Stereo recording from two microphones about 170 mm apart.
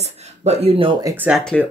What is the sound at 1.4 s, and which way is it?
Speech, 10° left (ahead or behind).